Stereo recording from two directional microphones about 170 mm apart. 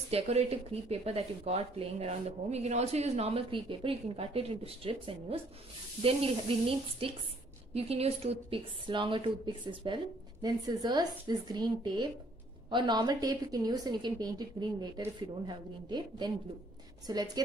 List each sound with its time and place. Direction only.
0.1 s a woman's voice: 40° right (ahead or behind)